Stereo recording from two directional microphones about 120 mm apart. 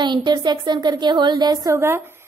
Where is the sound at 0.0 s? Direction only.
40° right (ahead or behind).